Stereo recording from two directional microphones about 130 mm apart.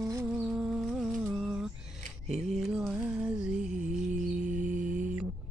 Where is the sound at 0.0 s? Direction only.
20° right (ahead or behind).